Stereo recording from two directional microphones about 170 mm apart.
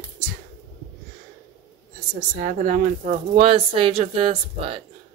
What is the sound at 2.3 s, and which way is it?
Speech, 50° right (ahead or behind).